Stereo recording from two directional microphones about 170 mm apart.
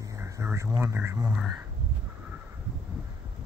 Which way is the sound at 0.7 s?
15° right (ahead or behind).